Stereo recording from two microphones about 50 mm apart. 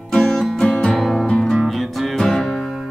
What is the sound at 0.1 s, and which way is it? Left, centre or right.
Music, centre.